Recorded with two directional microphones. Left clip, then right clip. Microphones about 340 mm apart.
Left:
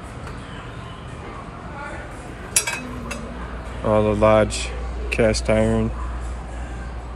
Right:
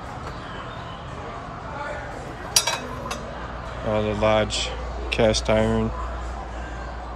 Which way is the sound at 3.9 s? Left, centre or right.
Centre.